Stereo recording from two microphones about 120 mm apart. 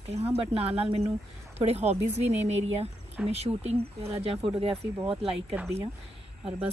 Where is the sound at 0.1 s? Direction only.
60° right (ahead or behind).